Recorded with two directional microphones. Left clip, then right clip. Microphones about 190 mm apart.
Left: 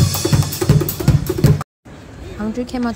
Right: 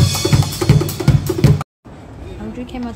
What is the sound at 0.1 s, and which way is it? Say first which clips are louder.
Music: right 2 dB; 15° right (ahead or behind).